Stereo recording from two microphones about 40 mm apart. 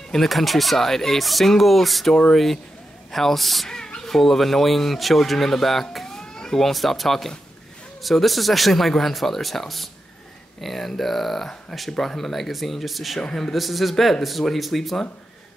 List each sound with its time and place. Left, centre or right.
0.1 s speech: centre
3.7 s a sound: centre
4.1 s speech: centre
6.6 s speech: centre
13.3 s speech: centre